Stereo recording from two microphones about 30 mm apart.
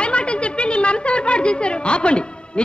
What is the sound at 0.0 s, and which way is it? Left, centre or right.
A man's voice, left.